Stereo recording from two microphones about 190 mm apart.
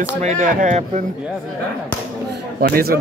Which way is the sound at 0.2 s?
45° right (ahead or behind).